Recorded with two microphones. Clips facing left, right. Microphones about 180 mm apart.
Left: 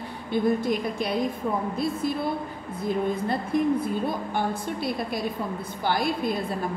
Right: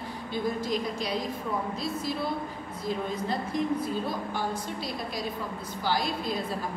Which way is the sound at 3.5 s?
55° left (ahead or behind).